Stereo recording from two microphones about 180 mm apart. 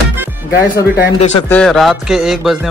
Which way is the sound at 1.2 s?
35° left (ahead or behind).